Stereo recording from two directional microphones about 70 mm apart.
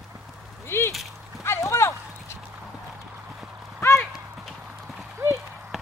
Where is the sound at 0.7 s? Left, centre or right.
Left.